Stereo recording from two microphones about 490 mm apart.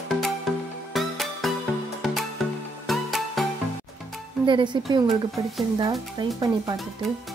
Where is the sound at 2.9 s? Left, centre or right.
Centre.